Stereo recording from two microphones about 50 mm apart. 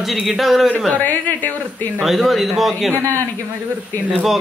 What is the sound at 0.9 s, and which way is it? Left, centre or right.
A woman's voice, left.